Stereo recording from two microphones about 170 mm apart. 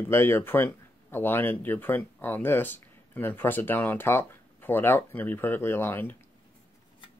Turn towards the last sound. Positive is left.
turn(degrees=10)  # may be behind; listen again after turning